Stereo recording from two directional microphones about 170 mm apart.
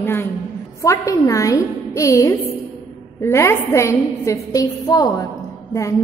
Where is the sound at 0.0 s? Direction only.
15° left (ahead or behind).